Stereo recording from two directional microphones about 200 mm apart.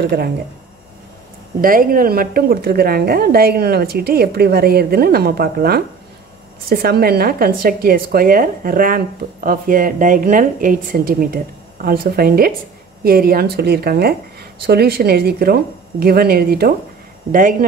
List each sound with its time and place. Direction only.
1.6 s a woman's voice: 45° right (ahead or behind)